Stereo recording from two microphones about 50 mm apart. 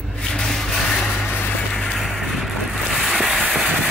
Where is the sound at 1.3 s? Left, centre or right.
Left.